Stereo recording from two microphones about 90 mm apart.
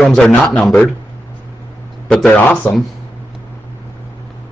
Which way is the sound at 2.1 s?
5° left (ahead or behind).